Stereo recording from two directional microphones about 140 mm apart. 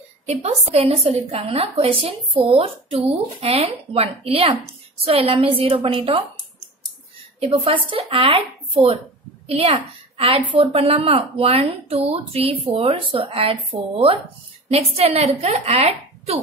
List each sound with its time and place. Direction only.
0.3 s a woman's voice: 50° right (ahead or behind)
7.3 s a woman's voice: 40° right (ahead or behind)